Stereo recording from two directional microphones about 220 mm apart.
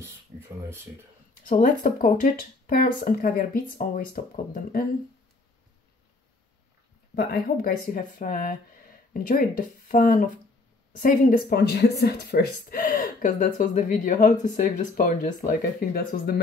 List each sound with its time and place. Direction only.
0.0 s a sound: 10° right (ahead or behind)
1.4 s speech: 40° left (ahead or behind)
7.2 s speech: 45° left (ahead or behind)